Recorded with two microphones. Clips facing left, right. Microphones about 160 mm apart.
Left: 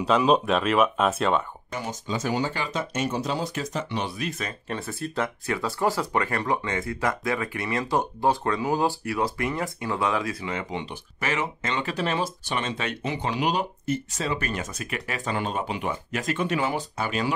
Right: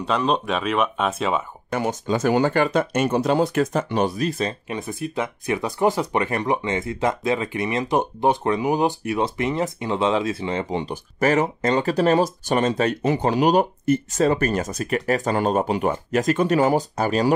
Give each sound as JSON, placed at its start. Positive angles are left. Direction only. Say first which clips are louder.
{"t": 0.0, "sound": "speech", "louder": "left 1 dB", "side_deg": 5}
{"t": 1.7, "sound": "speech", "louder": "right 9 dB", "side_deg": -60}
{"t": 4.6, "sound": "speech", "louder": "right 3 dB", "side_deg": -15}